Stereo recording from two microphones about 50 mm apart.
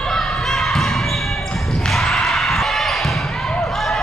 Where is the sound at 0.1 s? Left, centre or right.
Centre.